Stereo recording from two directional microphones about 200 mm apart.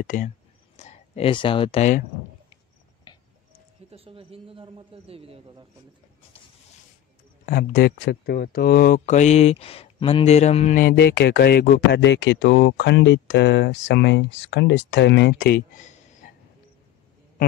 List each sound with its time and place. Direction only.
0.0 s speech: 40° left (ahead or behind)
3.1 s music: 20° left (ahead or behind)
3.9 s a man's voice: 30° right (ahead or behind)
7.4 s speech: 50° left (ahead or behind); by 10.8 s 35° left (ahead or behind)
10.8 s speech: 50° left (ahead or behind)